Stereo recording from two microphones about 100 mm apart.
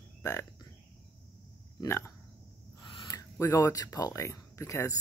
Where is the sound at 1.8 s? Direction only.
25° left (ahead or behind).